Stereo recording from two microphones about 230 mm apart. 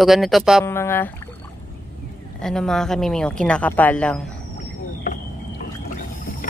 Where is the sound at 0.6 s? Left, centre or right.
Centre.